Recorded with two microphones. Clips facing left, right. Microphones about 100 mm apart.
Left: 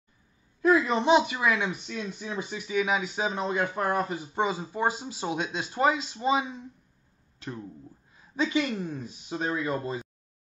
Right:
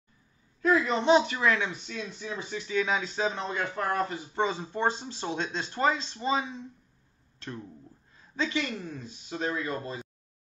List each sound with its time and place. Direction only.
0.6 s speech: 15° left (ahead or behind)